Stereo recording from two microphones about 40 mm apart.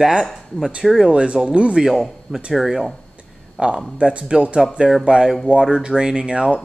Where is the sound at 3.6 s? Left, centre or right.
Right.